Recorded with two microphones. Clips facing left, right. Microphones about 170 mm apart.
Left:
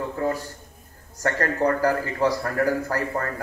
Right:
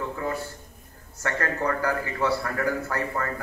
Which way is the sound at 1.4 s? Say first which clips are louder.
Left 5 dB; 40° left (ahead or behind).